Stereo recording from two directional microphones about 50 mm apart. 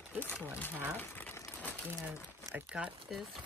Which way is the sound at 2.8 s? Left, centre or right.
Right.